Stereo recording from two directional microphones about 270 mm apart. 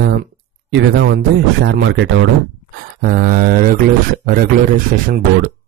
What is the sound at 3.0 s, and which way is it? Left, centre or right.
Speech, right.